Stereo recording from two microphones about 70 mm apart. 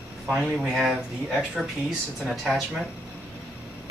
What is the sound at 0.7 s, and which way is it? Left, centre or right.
Speech, centre.